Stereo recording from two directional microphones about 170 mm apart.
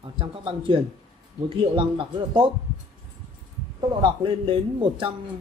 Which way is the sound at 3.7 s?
30° right (ahead or behind).